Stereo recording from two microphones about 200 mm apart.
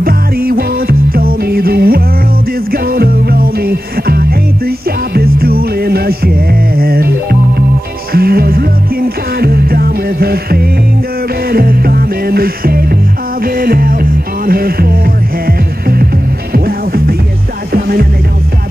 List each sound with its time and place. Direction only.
0.0 s music: 50° right (ahead or behind)